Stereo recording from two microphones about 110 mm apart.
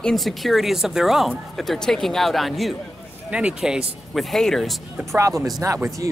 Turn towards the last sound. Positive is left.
turn(degrees=-30)  # may be behind; listen again after turning